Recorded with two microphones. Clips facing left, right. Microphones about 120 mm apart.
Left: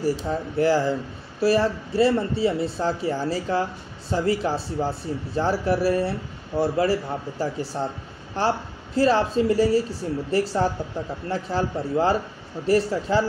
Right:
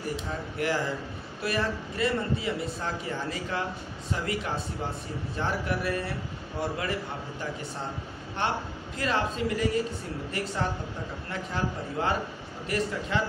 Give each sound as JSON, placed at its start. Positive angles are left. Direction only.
{"t": 0.6, "sound": "speech", "side_deg": 30}